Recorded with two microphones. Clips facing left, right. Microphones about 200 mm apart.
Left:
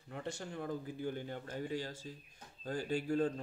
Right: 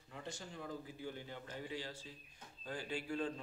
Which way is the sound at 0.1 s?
60° left (ahead or behind).